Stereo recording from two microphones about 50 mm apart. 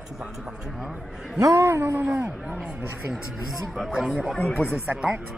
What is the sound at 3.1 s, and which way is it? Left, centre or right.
A man's voice, centre.